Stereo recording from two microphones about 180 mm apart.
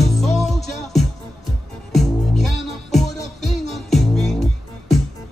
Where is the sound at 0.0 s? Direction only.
Centre (ahead or behind).